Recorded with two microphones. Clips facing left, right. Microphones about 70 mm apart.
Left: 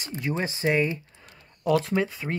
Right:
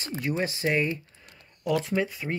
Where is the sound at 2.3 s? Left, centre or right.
Left.